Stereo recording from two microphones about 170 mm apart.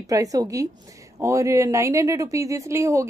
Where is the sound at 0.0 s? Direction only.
20° right (ahead or behind).